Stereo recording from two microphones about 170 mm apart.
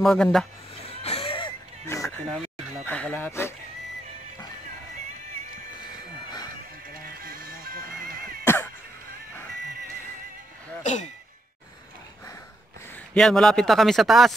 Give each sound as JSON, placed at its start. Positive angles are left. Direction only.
{"t": 0.0, "sound": "a man's voice", "side_deg": 0}
{"t": 1.0, "sound": "music", "side_deg": 35}
{"t": 1.9, "sound": "a sound", "side_deg": 15}
{"t": 2.3, "sound": "speech", "side_deg": 10}
{"t": 6.9, "sound": "music", "side_deg": -60}
{"t": 10.8, "sound": "speech", "side_deg": 45}
{"t": 12.9, "sound": "a man's voice", "side_deg": 5}